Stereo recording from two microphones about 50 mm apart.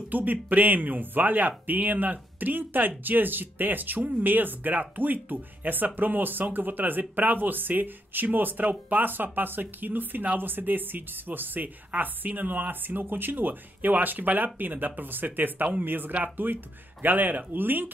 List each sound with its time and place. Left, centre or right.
0.1 s speech: right